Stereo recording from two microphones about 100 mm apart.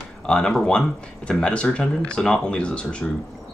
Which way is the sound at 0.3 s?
5° left (ahead or behind).